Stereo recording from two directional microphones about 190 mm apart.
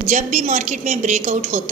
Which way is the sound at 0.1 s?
40° right (ahead or behind).